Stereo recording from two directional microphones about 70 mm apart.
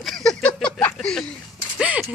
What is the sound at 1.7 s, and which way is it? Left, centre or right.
Speech, centre.